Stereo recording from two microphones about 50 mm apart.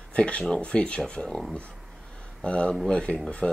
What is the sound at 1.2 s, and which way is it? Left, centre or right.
Speech, centre.